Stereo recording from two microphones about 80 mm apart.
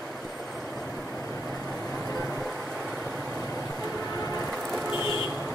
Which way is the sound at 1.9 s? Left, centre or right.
Centre.